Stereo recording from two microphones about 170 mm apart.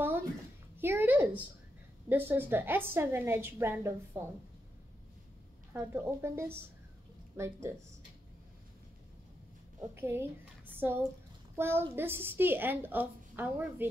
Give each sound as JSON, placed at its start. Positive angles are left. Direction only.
{"t": 0.7, "sound": "a sound", "side_deg": -15}
{"t": 2.0, "sound": "a woman's voice", "side_deg": -10}
{"t": 5.7, "sound": "a woman's voice", "side_deg": -15}
{"t": 9.8, "sound": "a woman's voice", "side_deg": -15}